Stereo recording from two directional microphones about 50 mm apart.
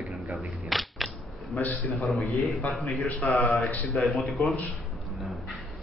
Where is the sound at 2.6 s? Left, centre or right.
Left.